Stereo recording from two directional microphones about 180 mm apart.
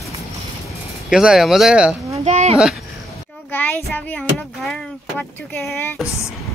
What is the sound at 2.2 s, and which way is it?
Speech, 40° right (ahead or behind).